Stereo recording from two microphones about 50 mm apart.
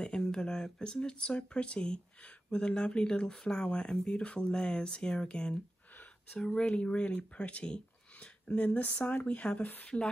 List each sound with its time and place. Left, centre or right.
0.0 s speech: centre